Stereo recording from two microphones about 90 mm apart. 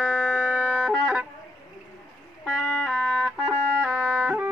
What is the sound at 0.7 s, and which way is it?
Music, 5° right (ahead or behind).